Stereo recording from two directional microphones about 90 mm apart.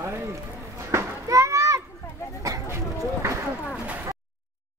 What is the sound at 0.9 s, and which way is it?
Children playing, 35° right (ahead or behind).